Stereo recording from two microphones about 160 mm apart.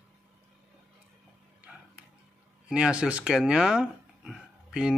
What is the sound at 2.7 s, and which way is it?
Speech, 5° right (ahead or behind).